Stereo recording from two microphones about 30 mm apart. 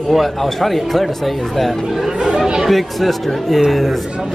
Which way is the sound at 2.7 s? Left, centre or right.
Centre.